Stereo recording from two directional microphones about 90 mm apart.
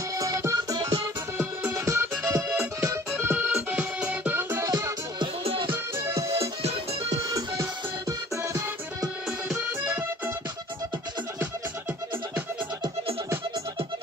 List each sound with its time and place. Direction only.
0.2 s music: 35° right (ahead or behind)
5.2 s music: 80° right
5.7 s music: 30° right (ahead or behind)
9.8 s music: 25° right (ahead or behind)